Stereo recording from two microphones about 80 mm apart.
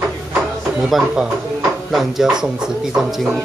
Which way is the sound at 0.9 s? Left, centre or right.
Centre.